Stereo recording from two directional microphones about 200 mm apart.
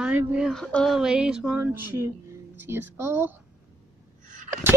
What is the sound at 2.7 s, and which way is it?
Child singing, 10° right (ahead or behind).